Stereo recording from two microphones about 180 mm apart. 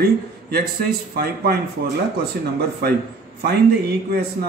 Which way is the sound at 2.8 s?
60° right (ahead or behind).